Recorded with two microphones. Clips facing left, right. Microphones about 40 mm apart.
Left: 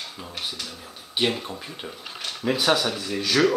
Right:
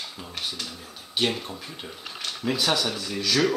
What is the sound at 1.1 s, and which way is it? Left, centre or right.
Speech, centre.